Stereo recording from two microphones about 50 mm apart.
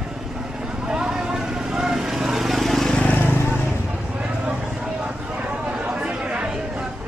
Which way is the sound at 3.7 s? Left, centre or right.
Right.